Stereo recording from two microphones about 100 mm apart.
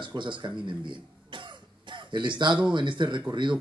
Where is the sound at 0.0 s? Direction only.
55° right (ahead or behind).